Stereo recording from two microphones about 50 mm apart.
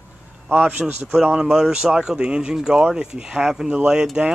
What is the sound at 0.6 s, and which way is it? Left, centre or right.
Speech, right.